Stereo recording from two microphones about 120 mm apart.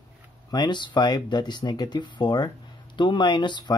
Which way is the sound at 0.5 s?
35° left (ahead or behind).